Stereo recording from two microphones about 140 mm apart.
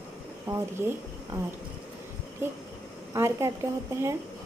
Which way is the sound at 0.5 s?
20° right (ahead or behind).